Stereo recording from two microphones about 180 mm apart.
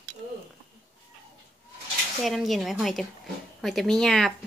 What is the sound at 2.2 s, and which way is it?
A woman's voice, centre (ahead or behind).